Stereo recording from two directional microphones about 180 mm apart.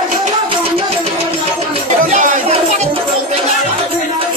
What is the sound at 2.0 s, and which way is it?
Music, 45° right (ahead or behind).